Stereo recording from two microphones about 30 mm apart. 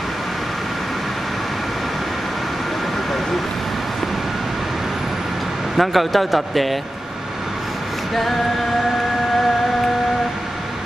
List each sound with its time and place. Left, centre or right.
5.8 s speech: centre